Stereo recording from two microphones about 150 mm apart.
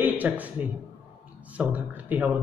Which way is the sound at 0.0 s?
10° right (ahead or behind).